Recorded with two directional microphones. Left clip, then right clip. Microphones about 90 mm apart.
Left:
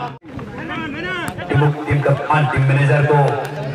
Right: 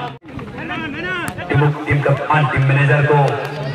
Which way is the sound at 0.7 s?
15° left (ahead or behind).